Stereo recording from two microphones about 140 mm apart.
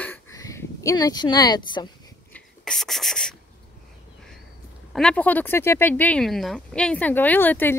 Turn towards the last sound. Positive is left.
turn(degrees=15)  # may be behind; listen again after turning